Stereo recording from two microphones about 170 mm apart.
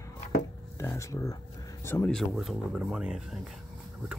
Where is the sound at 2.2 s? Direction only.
Centre (ahead or behind).